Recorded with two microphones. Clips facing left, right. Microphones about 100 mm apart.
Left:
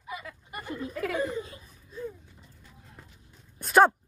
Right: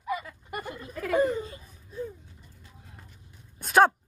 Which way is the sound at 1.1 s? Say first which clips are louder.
Right 8 dB; 50° right (ahead or behind).